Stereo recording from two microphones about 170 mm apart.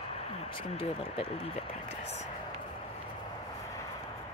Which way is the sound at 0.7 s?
35° left (ahead or behind).